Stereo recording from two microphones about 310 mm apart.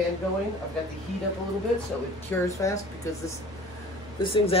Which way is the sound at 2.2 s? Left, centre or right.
Centre.